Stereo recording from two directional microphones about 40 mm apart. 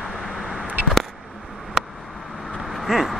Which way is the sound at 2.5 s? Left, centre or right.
Centre.